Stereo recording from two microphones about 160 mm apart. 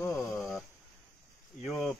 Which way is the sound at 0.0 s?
5° left (ahead or behind).